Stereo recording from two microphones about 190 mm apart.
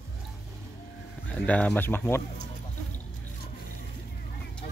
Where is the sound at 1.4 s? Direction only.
5° left (ahead or behind).